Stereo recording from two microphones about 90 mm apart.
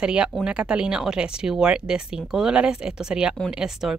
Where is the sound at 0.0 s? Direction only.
10° right (ahead or behind).